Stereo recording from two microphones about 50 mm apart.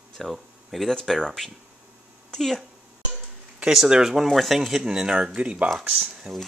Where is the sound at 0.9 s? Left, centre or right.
Centre.